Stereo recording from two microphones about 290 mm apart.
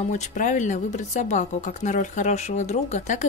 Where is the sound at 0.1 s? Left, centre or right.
Left.